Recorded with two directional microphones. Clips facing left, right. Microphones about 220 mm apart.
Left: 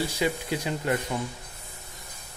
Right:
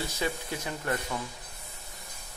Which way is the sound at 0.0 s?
15° left (ahead or behind).